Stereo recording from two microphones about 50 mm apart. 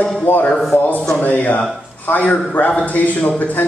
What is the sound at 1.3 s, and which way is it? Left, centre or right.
A man's voice, left.